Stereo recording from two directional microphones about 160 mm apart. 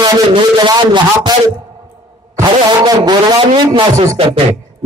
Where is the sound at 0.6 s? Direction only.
30° right (ahead or behind).